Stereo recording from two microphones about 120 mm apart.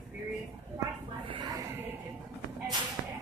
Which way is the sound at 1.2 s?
45° right (ahead or behind).